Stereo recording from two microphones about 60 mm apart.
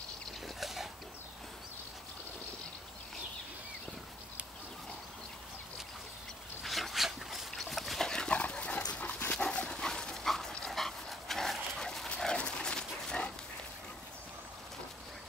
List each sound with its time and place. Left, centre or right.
0.6 s pig: centre
6.6 s dog: centre
8.1 s dog: centre